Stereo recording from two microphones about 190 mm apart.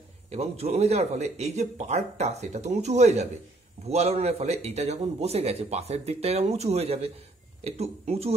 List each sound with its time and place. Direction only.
0.3 s a man's voice: 35° right (ahead or behind)